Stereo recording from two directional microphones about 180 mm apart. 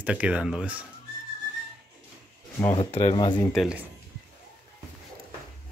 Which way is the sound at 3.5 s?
Centre (ahead or behind).